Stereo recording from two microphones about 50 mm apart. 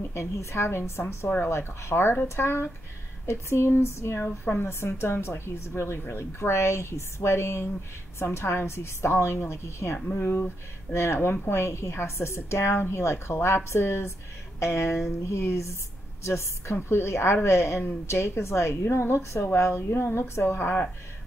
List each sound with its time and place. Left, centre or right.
0.1 s a woman's voice: left
0.7 s a woman's voice: left
10.1 s a woman's voice: left
16.7 s a woman's voice: left
20.4 s speech: left